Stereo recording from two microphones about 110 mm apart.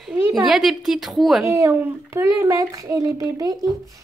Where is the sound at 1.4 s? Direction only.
25° right (ahead or behind).